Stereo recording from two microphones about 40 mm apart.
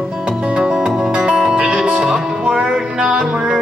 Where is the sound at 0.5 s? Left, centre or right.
Centre.